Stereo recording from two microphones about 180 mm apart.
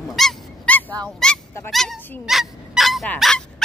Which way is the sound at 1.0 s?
5° left (ahead or behind).